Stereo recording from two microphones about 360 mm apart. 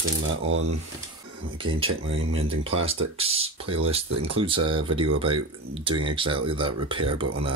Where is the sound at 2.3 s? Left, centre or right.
Centre.